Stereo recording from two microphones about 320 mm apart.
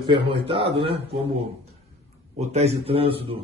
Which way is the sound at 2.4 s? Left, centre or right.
Right.